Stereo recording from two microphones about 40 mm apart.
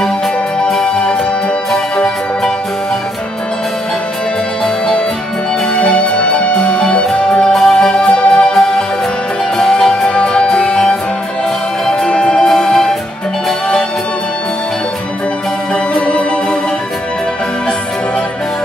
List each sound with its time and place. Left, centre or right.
0.8 s music: left
5.8 s music: left
7.5 s music: centre
8.5 s music: centre
12.1 s music: left
12.4 s music: centre